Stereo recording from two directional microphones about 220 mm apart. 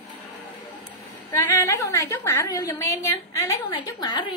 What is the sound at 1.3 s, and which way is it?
A woman's voice, 15° left (ahead or behind).